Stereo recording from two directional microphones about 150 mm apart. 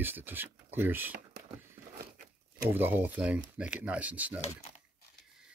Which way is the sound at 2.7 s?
15° right (ahead or behind).